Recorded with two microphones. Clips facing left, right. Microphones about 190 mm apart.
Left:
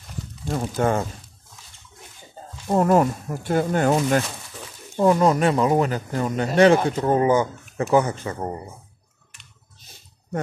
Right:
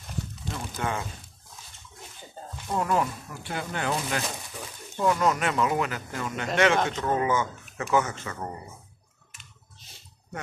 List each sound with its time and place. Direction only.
0.5 s speech: 45° left (ahead or behind)
2.7 s speech: 45° left (ahead or behind)